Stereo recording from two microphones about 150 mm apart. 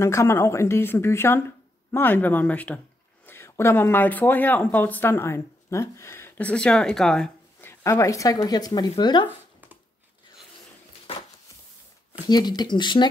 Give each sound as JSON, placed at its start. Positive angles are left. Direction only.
{"t": 0.0, "sound": "speech", "side_deg": 20}
{"t": 7.6, "sound": "speech", "side_deg": 15}
{"t": 12.1, "sound": "speech", "side_deg": 25}